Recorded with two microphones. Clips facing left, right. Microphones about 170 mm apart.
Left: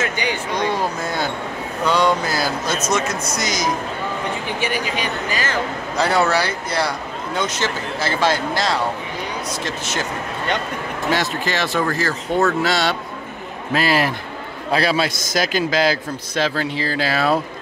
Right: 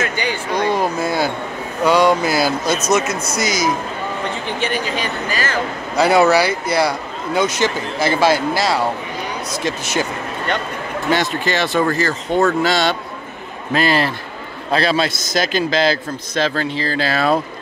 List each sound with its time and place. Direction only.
0.0 s a man's voice: 15° left (ahead or behind)
0.5 s a man's voice: 10° right (ahead or behind)
4.6 s a man's voice: 10° left (ahead or behind)
5.9 s a man's voice: 10° right (ahead or behind)
11.1 s a man's voice: centre (ahead or behind)